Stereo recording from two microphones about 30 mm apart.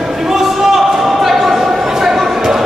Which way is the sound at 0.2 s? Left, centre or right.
Centre.